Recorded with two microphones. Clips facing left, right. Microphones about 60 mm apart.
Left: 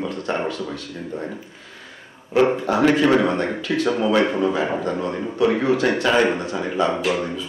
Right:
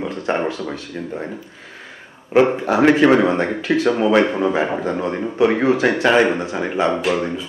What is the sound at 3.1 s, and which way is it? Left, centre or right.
A man's voice, right.